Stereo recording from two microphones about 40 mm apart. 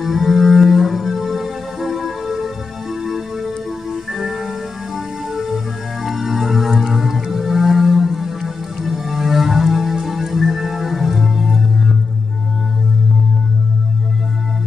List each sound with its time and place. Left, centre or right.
0.0 s cello: centre
3.9 s music: centre